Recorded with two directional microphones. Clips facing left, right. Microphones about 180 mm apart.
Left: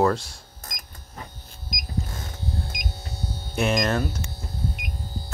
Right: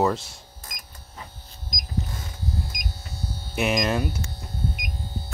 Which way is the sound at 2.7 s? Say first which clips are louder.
Left 2 dB; 25° left (ahead or behind).